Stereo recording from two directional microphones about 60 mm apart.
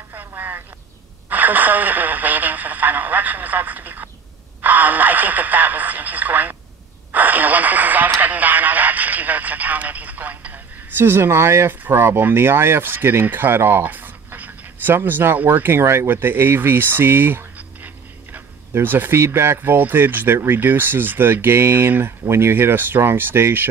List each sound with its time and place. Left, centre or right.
1.3 s radio: right
4.6 s speech: right
7.1 s radio: right
11.0 s speech: right
15.8 s speech: right